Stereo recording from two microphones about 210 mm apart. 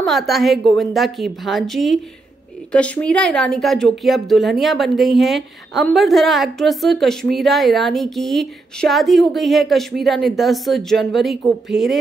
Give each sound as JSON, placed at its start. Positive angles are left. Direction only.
{"t": 0.0, "sound": "a woman's voice", "side_deg": 0}